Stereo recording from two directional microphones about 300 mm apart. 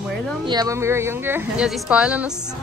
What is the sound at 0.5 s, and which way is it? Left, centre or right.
A woman's voice, centre.